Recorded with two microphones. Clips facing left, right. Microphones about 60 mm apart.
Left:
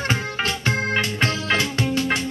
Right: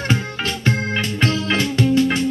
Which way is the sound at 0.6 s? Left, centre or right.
Centre.